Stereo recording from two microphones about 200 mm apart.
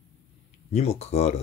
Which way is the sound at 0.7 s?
30° left (ahead or behind).